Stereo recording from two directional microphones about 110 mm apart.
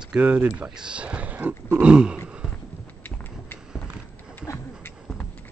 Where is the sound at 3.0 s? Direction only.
15° left (ahead or behind).